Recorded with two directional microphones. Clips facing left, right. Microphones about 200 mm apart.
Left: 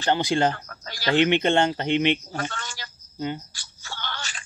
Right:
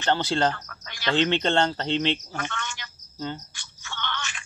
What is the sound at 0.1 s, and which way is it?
Speech, 15° left (ahead or behind).